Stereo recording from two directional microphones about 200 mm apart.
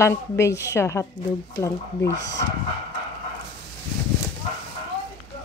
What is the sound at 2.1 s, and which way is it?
Speech, 65° left (ahead or behind).